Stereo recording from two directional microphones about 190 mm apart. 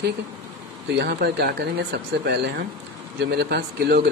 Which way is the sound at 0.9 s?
60° right (ahead or behind).